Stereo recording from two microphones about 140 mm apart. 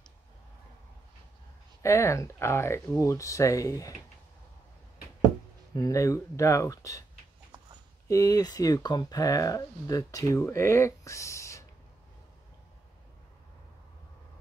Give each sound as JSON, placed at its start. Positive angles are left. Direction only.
{"t": 1.8, "sound": "speech", "side_deg": 20}
{"t": 5.8, "sound": "speech", "side_deg": 25}
{"t": 8.1, "sound": "speech", "side_deg": 25}